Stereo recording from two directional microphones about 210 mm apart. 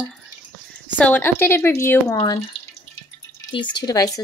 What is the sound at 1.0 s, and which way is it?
Speech, 10° left (ahead or behind).